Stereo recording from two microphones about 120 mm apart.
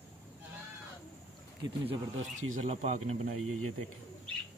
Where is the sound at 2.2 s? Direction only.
85° right; by 3.2 s 65° right (ahead or behind).